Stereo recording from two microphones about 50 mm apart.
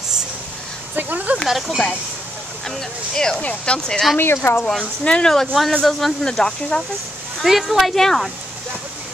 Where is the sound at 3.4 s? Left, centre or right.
Left.